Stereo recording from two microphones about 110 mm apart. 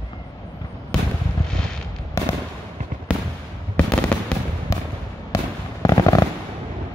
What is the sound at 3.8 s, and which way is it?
Fireworks, 10° left (ahead or behind).